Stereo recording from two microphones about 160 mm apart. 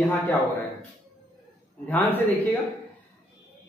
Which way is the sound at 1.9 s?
10° left (ahead or behind).